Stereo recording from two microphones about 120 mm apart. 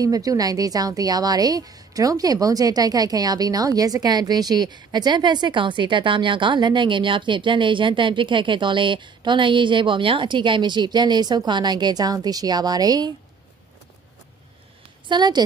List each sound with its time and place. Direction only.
0.0 s a woman's voice: 30° right (ahead or behind)
15.0 s a woman's voice: 40° right (ahead or behind)